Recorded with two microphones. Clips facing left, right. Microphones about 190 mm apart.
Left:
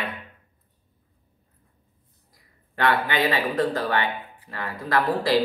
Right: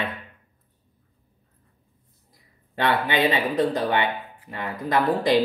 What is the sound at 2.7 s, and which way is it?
Speech, 20° right (ahead or behind).